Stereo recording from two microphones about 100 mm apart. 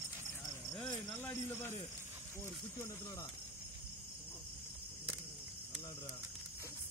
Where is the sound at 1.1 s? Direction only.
25° left (ahead or behind).